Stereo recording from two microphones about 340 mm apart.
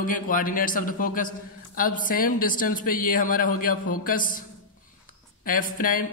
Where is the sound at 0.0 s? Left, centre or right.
Left.